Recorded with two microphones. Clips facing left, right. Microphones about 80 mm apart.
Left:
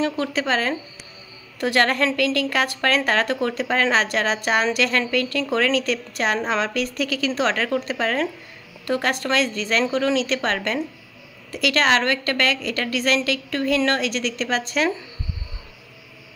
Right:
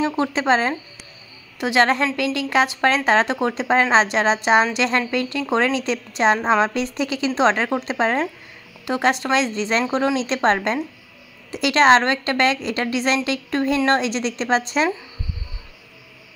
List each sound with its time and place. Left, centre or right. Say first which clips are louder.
0.0 s a woman's voice: right 2 dB; right